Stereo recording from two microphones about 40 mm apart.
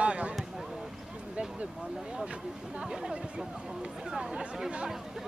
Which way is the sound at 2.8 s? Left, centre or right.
Centre.